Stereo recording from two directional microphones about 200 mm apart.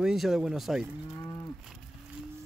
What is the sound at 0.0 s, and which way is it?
Speech, centre (ahead or behind).